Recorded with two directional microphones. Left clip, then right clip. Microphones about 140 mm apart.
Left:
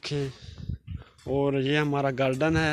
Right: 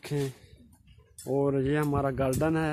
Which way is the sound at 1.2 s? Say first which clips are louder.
Left 1 dB; 5° right (ahead or behind).